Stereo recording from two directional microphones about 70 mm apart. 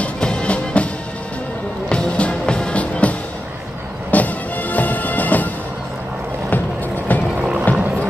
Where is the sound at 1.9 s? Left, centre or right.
Centre.